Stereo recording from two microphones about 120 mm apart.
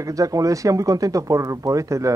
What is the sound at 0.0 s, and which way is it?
Speech, 30° right (ahead or behind).